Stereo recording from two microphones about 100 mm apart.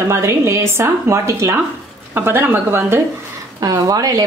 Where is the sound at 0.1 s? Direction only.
25° right (ahead or behind).